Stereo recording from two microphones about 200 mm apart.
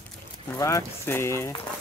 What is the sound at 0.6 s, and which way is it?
Speech, 15° left (ahead or behind).